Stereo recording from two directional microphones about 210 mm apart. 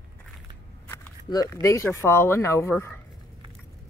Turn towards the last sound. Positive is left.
turn(degrees=10)  # may be behind; listen again after turning